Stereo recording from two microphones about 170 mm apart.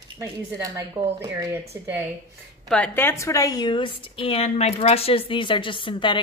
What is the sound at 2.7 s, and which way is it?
A woman's voice, 10° left (ahead or behind).